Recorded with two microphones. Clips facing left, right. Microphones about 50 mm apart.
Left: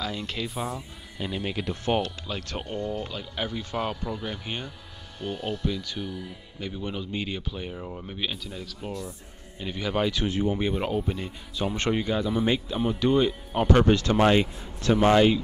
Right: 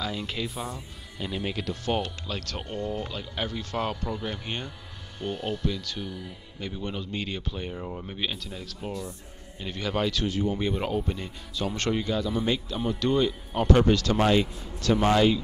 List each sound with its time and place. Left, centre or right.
0.0 s speech: centre
1.9 s speech: centre
10.2 s speech: left
10.7 s speech: centre